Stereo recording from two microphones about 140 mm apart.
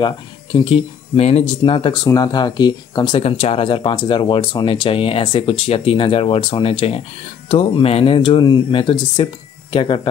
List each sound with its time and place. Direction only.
0.0 s speech: 35° left (ahead or behind)
2.0 s speech: 25° left (ahead or behind)
3.2 s speech: 45° left (ahead or behind)